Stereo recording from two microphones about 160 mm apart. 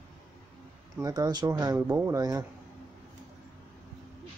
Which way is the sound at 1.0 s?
25° right (ahead or behind).